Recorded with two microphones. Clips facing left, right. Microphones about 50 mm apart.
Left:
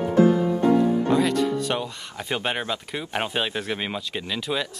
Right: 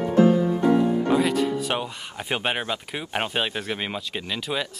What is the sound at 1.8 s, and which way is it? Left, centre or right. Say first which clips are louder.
Speech: even; centre.